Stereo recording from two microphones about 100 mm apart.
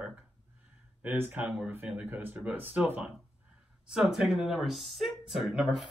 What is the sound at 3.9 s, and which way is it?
Speech, 5° right (ahead or behind).